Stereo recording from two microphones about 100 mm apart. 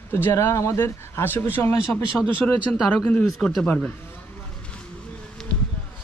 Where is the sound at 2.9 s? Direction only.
10° left (ahead or behind).